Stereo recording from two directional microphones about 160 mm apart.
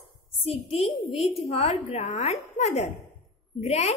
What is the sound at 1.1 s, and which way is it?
A woman's voice, 40° left (ahead or behind).